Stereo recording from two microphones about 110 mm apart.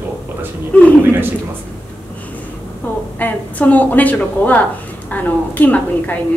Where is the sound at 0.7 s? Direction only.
15° left (ahead or behind).